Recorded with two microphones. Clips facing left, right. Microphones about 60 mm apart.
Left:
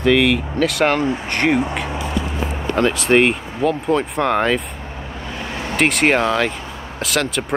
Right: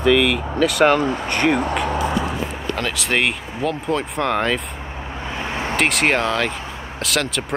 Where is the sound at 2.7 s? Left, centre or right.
Left.